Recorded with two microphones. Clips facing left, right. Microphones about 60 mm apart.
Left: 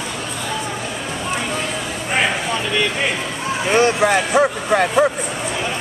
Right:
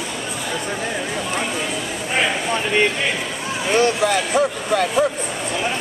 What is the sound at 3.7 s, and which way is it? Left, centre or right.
Speech, left.